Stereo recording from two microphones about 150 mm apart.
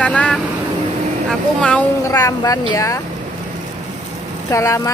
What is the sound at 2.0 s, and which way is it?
Speech, 25° left (ahead or behind).